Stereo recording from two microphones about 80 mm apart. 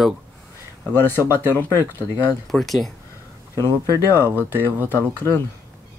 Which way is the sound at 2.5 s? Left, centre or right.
Centre.